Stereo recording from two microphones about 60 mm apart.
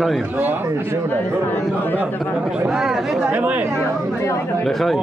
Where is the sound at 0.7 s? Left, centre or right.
Right.